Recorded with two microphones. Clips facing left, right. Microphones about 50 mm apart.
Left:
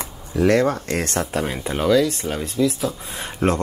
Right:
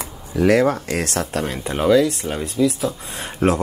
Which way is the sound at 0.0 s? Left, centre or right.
Centre.